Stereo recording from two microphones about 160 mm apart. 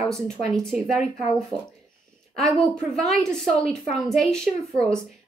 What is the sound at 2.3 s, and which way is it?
A woman's voice, centre (ahead or behind).